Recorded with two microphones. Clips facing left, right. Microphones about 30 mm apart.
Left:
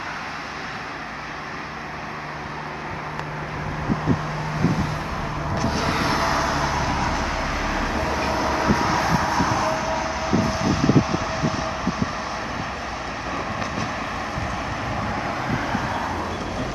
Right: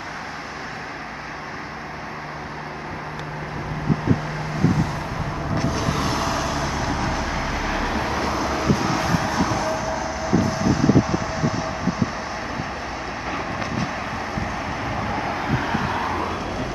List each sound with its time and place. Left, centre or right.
5.7 s vehicle: left
5.9 s vehicle: left; by 8.0 s centre
8.5 s vehicle: centre
9.7 s train: left
13.3 s vehicle: centre
15.0 s vehicle: centre